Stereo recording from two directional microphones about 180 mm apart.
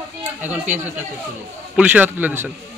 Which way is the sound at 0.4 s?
10° right (ahead or behind).